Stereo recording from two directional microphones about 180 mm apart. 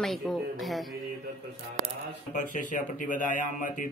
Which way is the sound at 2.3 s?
45° left (ahead or behind).